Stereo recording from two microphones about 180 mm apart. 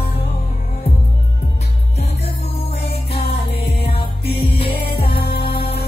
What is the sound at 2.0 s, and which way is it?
Music, 35° left (ahead or behind).